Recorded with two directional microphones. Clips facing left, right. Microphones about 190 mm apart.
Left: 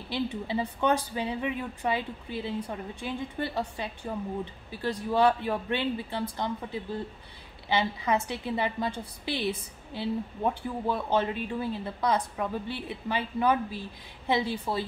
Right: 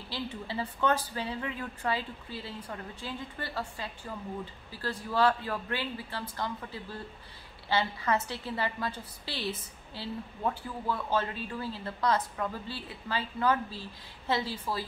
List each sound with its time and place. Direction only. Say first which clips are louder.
0.1 s a woman's voice: left 6 dB; 20° left (ahead or behind)